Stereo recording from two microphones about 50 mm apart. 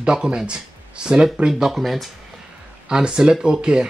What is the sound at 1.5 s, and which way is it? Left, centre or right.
Speech, centre.